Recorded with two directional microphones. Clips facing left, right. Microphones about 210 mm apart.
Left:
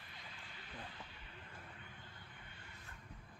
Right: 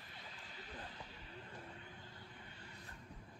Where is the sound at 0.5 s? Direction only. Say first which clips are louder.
Right 1 dB; 40° right (ahead or behind).